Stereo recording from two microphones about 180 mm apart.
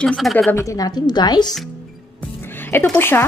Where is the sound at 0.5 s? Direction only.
20° left (ahead or behind).